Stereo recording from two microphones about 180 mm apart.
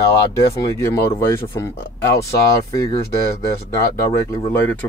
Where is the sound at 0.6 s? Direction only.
15° left (ahead or behind).